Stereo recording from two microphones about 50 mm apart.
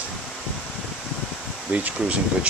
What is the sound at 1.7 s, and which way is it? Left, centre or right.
Speech, right.